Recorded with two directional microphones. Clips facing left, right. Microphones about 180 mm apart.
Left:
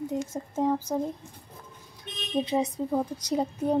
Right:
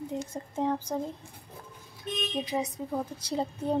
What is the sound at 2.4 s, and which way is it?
Speech, 30° left (ahead or behind).